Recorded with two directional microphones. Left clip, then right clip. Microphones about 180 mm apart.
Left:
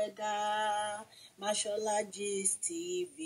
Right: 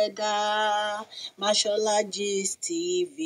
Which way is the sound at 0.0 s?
40° right (ahead or behind).